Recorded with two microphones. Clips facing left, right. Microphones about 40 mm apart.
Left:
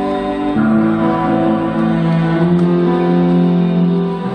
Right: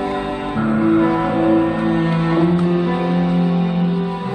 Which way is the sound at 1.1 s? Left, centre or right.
Left.